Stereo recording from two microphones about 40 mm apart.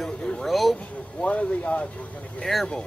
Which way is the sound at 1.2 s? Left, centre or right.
Left.